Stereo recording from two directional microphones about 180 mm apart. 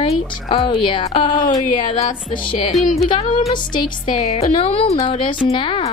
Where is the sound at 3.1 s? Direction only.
30° left (ahead or behind).